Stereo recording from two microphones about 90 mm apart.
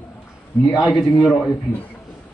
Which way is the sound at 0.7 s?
Centre (ahead or behind).